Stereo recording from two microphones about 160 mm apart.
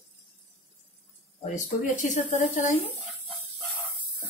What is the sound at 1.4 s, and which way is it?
A woman's voice, 50° left (ahead or behind).